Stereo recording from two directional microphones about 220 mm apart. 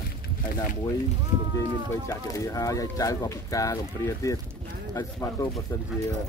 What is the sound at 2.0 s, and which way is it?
Speech, 15° left (ahead or behind).